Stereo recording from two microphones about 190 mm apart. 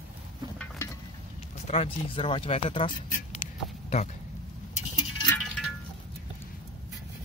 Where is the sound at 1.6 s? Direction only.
30° left (ahead or behind).